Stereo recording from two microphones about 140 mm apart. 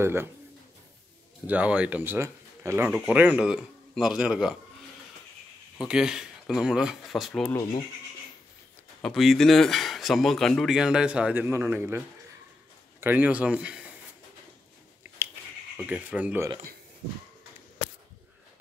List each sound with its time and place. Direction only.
0.0 s speech: 15° right (ahead or behind)
1.5 s speech: 10° right (ahead or behind)
2.9 s speech: 10° right (ahead or behind)
5.8 s speech: 5° right (ahead or behind)
9.0 s speech: centre (ahead or behind); by 12.0 s 15° right (ahead or behind)
13.0 s speech: 10° right (ahead or behind)
15.9 s speech: 10° right (ahead or behind)